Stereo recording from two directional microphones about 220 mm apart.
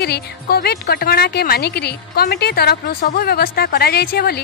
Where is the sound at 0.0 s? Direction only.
45° left (ahead or behind).